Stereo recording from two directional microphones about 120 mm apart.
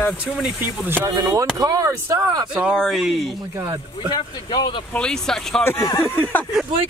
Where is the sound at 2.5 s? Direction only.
Centre (ahead or behind).